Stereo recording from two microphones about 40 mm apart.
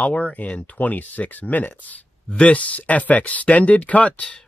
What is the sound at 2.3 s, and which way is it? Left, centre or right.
Speech, left.